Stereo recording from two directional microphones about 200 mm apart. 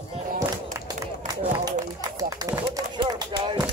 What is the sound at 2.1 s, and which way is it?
Speech, 15° right (ahead or behind).